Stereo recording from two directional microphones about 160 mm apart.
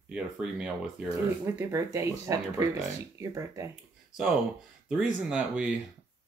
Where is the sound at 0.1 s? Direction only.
5° right (ahead or behind).